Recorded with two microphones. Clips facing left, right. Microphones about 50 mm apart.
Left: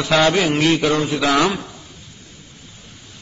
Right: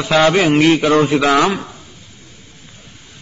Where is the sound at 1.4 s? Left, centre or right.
Right.